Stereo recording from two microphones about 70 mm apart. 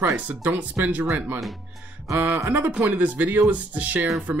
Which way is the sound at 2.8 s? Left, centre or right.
Right.